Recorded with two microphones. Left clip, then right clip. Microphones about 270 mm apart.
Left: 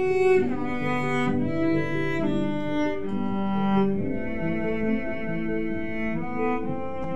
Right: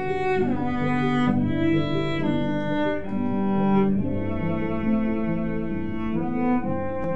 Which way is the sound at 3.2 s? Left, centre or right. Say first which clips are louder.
Right 4 dB; left.